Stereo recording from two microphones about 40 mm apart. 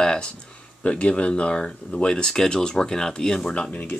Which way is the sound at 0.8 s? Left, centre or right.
Left.